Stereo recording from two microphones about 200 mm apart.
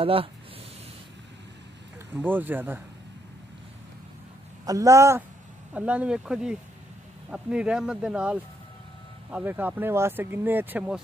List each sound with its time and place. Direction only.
0.0 s speech: 30° right (ahead or behind)
2.1 s speech: 10° right (ahead or behind)
4.6 s speech: 15° right (ahead or behind)